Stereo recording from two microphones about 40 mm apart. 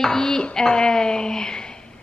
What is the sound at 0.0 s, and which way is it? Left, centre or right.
A woman's voice, centre.